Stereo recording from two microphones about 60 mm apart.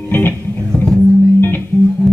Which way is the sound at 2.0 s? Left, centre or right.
Centre.